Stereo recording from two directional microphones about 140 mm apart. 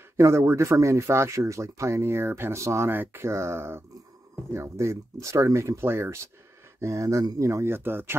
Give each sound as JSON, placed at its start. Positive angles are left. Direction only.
{"t": 0.2, "sound": "speech", "side_deg": -20}